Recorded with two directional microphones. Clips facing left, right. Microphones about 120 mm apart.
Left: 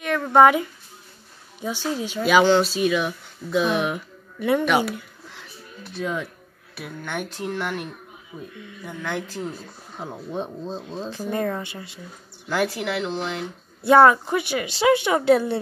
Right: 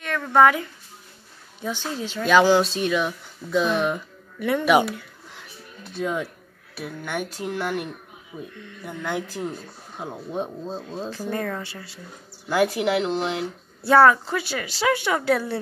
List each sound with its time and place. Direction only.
0.0 s a sound: 15° left (ahead or behind)
1.6 s a woman's voice: 10° left (ahead or behind)
4.4 s a woman's voice: 20° left (ahead or behind)
5.9 s speech: 15° right (ahead or behind)
11.1 s a woman's voice: 15° left (ahead or behind)
12.4 s speech: 15° right (ahead or behind)
12.8 s speech: 30° right (ahead or behind)
13.8 s a woman's voice: 20° left (ahead or behind)